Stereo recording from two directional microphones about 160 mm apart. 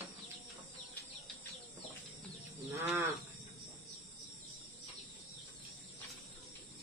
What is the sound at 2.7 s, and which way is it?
Livestock, 15° right (ahead or behind).